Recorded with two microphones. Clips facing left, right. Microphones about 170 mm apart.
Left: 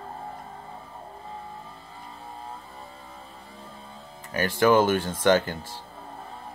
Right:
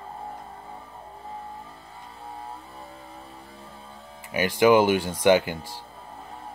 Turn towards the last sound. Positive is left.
turn(degrees=-10)  # may be behind; listen again after turning